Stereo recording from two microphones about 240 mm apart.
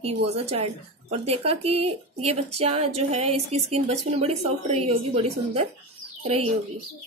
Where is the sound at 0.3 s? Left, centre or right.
Right.